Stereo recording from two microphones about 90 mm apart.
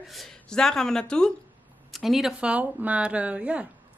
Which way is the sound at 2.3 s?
15° right (ahead or behind).